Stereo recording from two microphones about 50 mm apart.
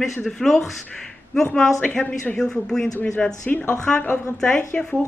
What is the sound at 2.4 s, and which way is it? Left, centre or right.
Speech, centre.